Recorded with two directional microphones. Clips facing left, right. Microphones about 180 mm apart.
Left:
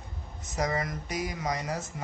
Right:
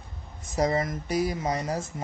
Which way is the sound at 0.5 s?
30° right (ahead or behind).